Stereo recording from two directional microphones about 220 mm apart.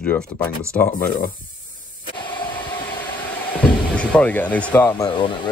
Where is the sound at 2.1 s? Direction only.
20° left (ahead or behind).